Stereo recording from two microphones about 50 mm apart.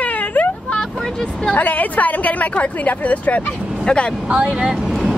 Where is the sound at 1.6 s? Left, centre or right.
Left.